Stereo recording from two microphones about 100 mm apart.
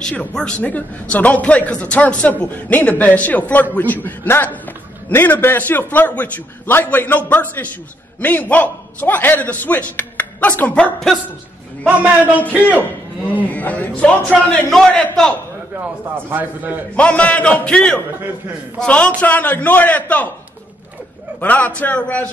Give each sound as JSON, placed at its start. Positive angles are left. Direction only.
{"t": 0.0, "sound": "a man's voice", "side_deg": 10}
{"t": 11.8, "sound": "a man's voice", "side_deg": -15}
{"t": 12.4, "sound": "a man's voice", "side_deg": 15}
{"t": 15.7, "sound": "a man's voice", "side_deg": -20}
{"t": 16.9, "sound": "a man's voice", "side_deg": 15}
{"t": 21.4, "sound": "a man's voice", "side_deg": 15}